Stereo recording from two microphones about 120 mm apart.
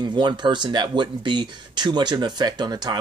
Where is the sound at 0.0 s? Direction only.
40° right (ahead or behind).